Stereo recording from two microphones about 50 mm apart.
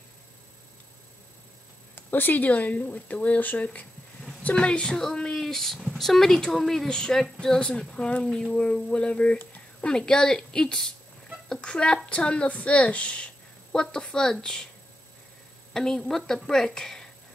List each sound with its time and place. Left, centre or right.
2.0 s speech: left
4.6 s a woman's voice: centre
15.7 s speech: centre